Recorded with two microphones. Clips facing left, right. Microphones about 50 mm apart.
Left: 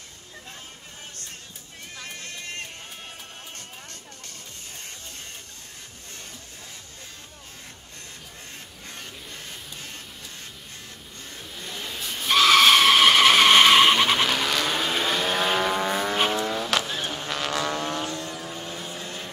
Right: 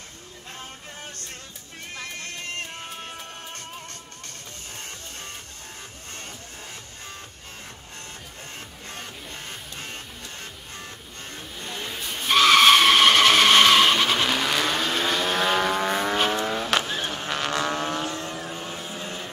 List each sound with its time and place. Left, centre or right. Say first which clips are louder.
11.5 s vehicle: right 1 dB; centre
14.3 s vehicle: right 1 dB; centre
18.1 s vehicle: right 1 dB; right